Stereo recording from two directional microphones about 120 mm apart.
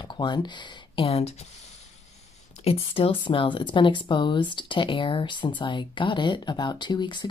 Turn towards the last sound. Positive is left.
turn(degrees=40)  # may be behind; listen again after turning